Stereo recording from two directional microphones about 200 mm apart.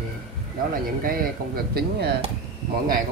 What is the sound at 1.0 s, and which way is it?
Speech, 50° right (ahead or behind).